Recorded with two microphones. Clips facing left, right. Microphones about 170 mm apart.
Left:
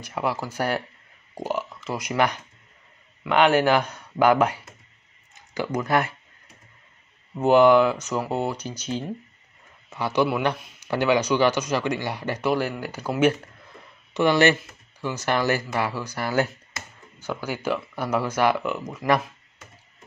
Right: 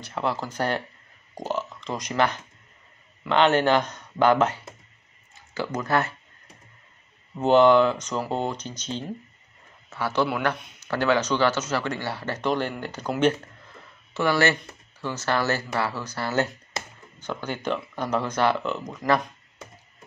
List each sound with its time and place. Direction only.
0.0 s speech: 10° left (ahead or behind)
5.3 s a sound: 15° left (ahead or behind)
5.8 s speech: 15° left (ahead or behind)
7.3 s speech: 10° left (ahead or behind)
14.1 s speech: 20° left (ahead or behind)